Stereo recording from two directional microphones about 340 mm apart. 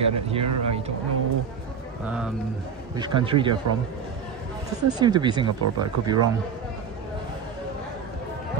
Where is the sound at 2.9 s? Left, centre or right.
Centre.